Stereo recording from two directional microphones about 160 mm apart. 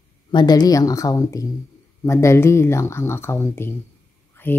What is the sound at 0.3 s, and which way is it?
Speech, 25° left (ahead or behind).